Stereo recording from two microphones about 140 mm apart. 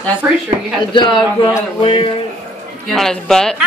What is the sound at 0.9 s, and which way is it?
Speech, 35° left (ahead or behind).